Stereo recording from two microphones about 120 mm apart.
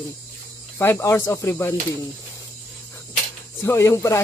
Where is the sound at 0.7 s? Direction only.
20° left (ahead or behind).